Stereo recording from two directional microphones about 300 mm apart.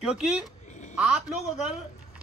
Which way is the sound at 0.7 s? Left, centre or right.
Left.